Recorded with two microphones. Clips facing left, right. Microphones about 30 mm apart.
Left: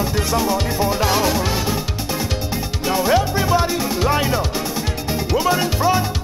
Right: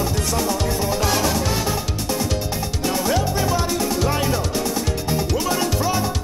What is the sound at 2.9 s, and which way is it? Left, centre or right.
Music, centre.